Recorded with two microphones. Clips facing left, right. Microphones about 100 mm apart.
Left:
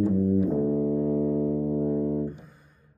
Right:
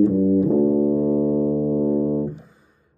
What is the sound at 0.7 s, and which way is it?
Music, 45° right (ahead or behind).